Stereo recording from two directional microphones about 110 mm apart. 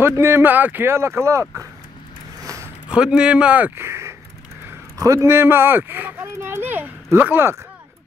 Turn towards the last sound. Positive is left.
turn(degrees=-20)  # may be behind; listen again after turning